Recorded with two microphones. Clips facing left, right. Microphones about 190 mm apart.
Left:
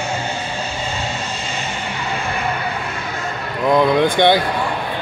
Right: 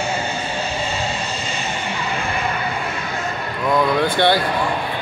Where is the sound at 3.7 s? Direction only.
20° left (ahead or behind).